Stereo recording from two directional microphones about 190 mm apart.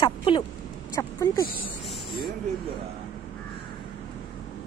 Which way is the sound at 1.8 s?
Centre (ahead or behind).